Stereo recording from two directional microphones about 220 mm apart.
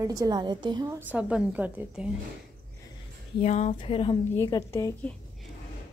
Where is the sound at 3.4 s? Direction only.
30° left (ahead or behind); by 5.1 s 10° left (ahead or behind).